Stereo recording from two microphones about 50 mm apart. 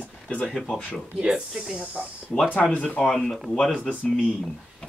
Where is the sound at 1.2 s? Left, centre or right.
Centre.